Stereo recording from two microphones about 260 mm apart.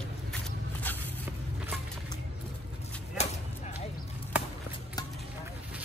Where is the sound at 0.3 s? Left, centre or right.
Centre.